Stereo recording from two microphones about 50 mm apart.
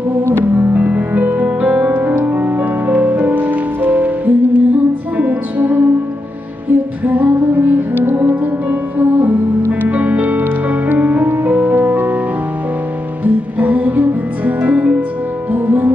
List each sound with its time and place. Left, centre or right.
0.2 s music: right
0.6 s music: right
1.9 s music: right
7.1 s music: right
13.2 s music: right